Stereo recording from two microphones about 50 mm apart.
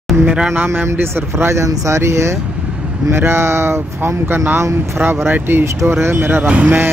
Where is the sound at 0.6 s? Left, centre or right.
Right.